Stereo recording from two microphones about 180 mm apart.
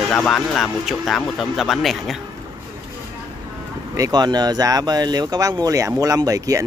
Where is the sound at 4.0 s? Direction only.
20° right (ahead or behind).